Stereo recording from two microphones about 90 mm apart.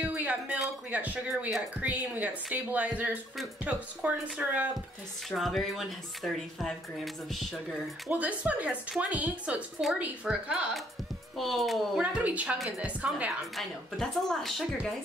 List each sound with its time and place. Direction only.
0.1 s a sound: 20° right (ahead or behind)
0.8 s speech: 15° right (ahead or behind)
5.3 s speech: centre (ahead or behind)
8.1 s speech: 15° right (ahead or behind)
11.3 s speech: centre (ahead or behind)
12.0 s speech: 15° right (ahead or behind)
13.6 s speech: 5° left (ahead or behind)